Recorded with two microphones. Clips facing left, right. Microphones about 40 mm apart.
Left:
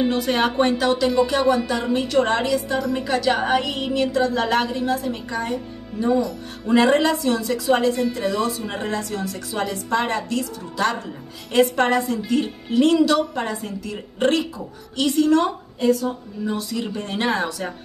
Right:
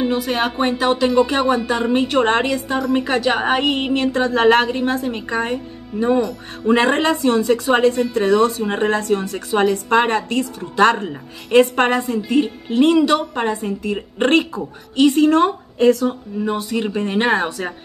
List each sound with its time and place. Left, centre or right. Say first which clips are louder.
0.0 s speech: right 1 dB; centre
0.7 s a woman's voice: right 3 dB; right
11.5 s speech: right 5 dB; right
12.3 s speech: right 4 dB; centre
12.7 s a woman's voice: right 2 dB; right
13.9 s a woman's voice: right 4 dB; right
15.8 s a woman's voice: right 5 dB; right
16.7 s a woman's voice: right 6 dB; right